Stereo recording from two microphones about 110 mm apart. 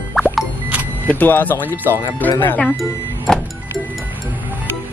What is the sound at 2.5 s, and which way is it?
Speech, 5° left (ahead or behind).